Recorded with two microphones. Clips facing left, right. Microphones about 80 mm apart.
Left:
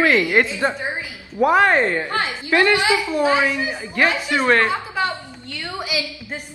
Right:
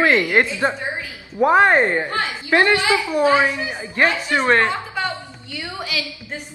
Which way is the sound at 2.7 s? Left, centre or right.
Left.